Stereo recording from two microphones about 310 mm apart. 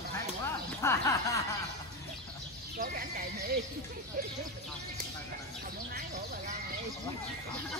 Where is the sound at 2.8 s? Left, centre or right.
Right.